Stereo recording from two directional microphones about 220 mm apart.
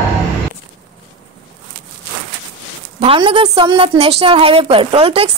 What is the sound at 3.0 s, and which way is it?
A woman's voice, 25° right (ahead or behind).